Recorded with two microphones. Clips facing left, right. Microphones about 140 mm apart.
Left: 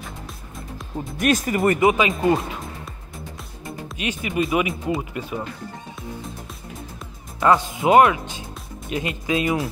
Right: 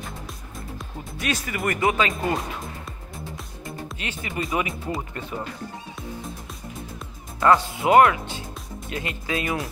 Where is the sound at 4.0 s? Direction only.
20° left (ahead or behind).